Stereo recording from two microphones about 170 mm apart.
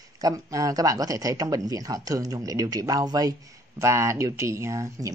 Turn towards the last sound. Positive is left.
turn(degrees=-15)  # may be behind; listen again after turning